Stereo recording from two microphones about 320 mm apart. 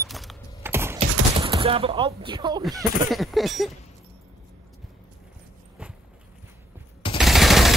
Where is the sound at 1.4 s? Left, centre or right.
Centre.